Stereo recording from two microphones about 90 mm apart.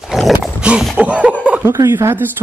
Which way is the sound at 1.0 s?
15° right (ahead or behind).